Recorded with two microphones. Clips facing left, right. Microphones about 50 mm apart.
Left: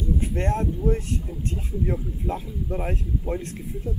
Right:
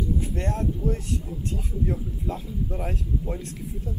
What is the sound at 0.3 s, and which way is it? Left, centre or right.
Speech, left.